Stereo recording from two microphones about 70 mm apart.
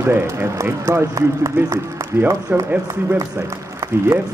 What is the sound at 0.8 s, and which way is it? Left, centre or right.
Speech, right.